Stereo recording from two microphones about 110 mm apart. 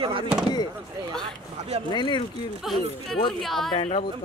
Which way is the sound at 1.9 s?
45° left (ahead or behind).